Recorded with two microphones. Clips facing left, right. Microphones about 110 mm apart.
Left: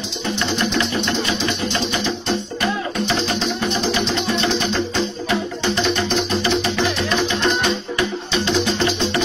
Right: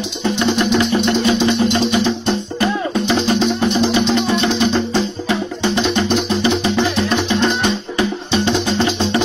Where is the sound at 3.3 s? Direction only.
25° right (ahead or behind).